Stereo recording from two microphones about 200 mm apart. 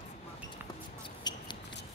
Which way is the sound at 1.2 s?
20° left (ahead or behind).